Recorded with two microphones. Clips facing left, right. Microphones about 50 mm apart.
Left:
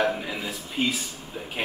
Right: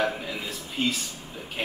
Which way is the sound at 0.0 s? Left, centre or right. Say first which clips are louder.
Left 2 dB; centre.